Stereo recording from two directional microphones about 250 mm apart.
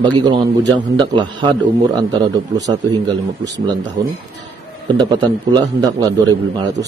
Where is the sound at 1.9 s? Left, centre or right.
Centre.